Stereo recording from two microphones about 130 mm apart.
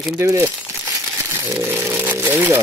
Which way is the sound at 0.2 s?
20° right (ahead or behind).